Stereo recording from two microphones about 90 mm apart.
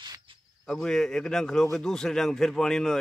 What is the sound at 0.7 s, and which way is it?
Speech, 5° left (ahead or behind).